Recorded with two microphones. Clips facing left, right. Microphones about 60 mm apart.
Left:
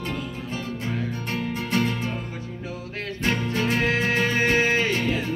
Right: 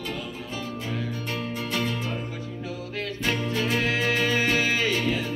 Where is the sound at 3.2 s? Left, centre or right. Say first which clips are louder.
Left 2 dB; left.